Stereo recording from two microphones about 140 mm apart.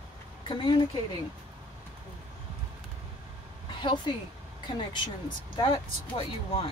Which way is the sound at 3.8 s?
35° left (ahead or behind).